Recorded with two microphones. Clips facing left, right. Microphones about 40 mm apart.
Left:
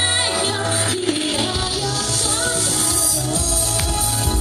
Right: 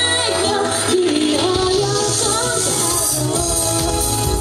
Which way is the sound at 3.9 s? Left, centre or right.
Left.